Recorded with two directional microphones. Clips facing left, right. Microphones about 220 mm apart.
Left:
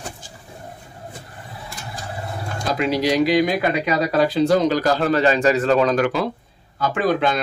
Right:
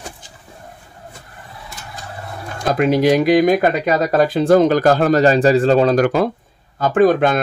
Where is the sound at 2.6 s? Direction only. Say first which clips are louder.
Right 6 dB; 50° right (ahead or behind).